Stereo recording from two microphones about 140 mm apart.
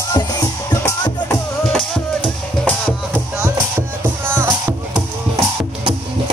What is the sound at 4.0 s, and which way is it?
Music, 15° right (ahead or behind).